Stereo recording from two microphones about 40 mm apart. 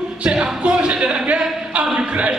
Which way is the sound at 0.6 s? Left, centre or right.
Right.